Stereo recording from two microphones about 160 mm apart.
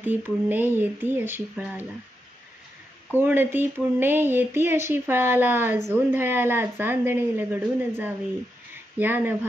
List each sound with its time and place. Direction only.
0.0 s speech: 10° right (ahead or behind)
3.2 s speech: 15° right (ahead or behind)